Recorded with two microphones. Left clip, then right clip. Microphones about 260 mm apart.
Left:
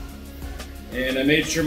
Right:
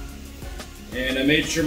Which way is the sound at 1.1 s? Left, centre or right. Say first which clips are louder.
Even; centre.